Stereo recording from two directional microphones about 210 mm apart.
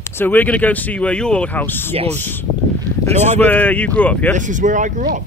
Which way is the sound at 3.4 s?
10° left (ahead or behind).